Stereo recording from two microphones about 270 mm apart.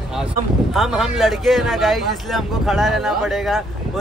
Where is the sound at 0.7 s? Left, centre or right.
Centre.